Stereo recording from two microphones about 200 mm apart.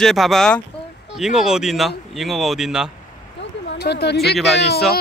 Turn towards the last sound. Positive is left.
turn(degrees=55)  # may be behind; listen again after turning